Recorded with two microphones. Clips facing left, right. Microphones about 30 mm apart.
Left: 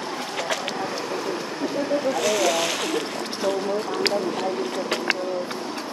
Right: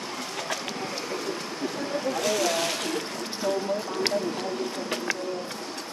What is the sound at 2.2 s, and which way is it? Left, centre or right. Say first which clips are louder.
Speech: left 2 dB; left.